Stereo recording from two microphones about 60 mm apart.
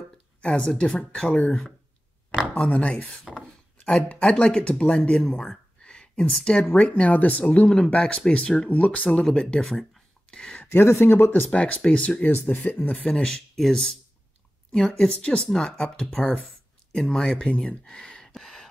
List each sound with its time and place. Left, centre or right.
0.4 s speech: centre
2.6 s speech: left
4.1 s speech: centre
5.3 s a sound: centre
6.7 s speech: left
9.2 s speech: centre
10.6 s speech: left
11.5 s speech: left
12.9 s speech: centre
17.5 s speech: centre
18.3 s a sound: centre